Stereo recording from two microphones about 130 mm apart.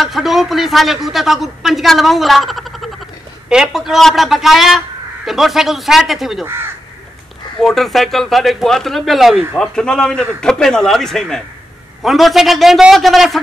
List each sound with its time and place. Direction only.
0.0 s a man's voice: centre (ahead or behind)
6.4 s speech: 20° right (ahead or behind)
7.6 s a man's voice: centre (ahead or behind)